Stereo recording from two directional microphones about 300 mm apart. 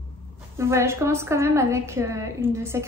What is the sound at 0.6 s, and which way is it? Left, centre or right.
A woman's voice, centre.